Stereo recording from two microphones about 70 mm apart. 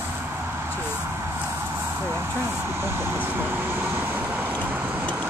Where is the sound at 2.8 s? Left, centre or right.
Right.